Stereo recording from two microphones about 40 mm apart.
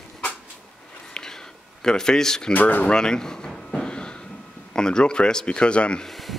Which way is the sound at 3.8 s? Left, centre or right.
Left.